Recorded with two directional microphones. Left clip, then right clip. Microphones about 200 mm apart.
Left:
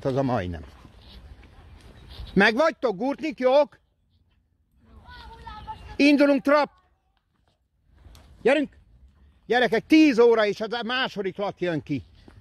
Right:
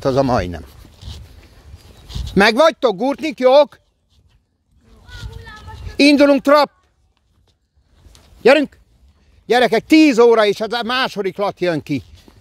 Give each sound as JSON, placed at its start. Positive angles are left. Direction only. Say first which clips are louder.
{"t": 0.0, "sound": "a sound", "louder": "right 9 dB", "side_deg": -30}
{"t": 2.0, "sound": "speech", "louder": "right 7 dB", "side_deg": -30}
{"t": 5.9, "sound": "speech", "louder": "right 8 dB", "side_deg": -25}
{"t": 8.4, "sound": "speech", "louder": "right 10 dB", "side_deg": -40}
{"t": 9.5, "sound": "speech", "louder": "right 7 dB", "side_deg": -25}